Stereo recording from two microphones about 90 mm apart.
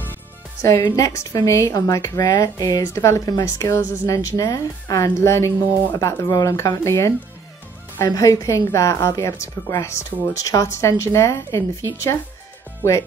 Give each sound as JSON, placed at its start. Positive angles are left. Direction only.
{"t": 0.6, "sound": "a woman's voice", "side_deg": 35}